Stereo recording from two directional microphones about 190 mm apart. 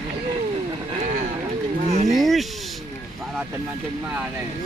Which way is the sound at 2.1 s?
Centre (ahead or behind).